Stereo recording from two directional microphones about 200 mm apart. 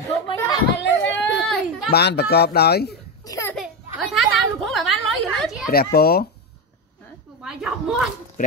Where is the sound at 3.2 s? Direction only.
15° left (ahead or behind).